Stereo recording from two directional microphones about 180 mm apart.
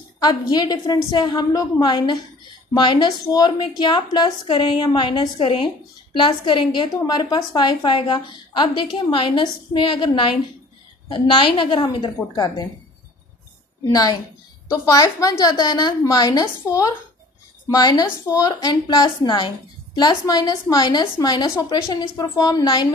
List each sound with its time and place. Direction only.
0.2 s a woman's voice: 20° left (ahead or behind)
13.9 s a woman's voice: 20° left (ahead or behind)